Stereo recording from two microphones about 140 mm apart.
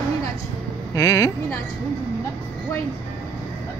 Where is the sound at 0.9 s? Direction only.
25° left (ahead or behind).